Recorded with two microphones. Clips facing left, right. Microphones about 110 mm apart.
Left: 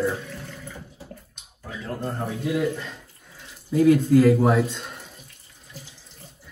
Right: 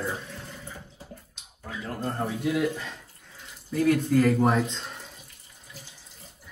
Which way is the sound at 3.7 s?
15° left (ahead or behind).